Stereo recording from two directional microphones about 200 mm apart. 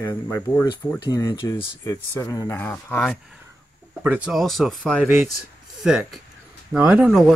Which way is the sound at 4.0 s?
5° right (ahead or behind).